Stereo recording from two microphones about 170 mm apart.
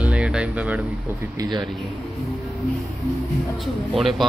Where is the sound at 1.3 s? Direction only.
25° right (ahead or behind).